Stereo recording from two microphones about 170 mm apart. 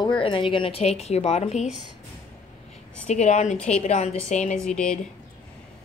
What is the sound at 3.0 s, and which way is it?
A woman's voice, 40° left (ahead or behind).